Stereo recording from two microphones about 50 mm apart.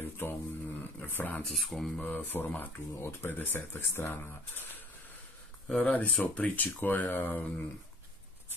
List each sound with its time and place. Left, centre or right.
0.2 s a sound: left
1.5 s mantra: centre
2.0 s speech: left
3.0 s speech: left
4.2 s speech: left